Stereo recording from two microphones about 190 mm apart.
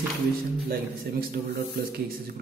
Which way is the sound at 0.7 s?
50° right (ahead or behind).